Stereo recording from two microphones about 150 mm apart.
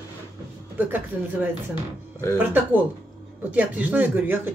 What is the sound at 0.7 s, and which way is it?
Speech, 10° right (ahead or behind).